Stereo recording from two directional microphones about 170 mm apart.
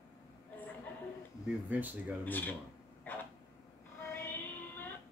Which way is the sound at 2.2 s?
10° left (ahead or behind).